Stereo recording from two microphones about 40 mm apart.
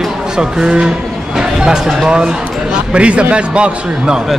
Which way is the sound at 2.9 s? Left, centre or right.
Right.